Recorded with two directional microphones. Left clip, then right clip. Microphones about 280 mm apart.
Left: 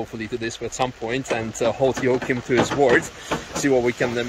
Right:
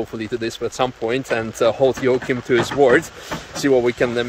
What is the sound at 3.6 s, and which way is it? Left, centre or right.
Speech, centre.